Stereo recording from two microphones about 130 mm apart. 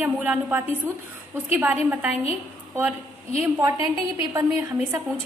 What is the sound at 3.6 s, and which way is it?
Speech, 25° right (ahead or behind).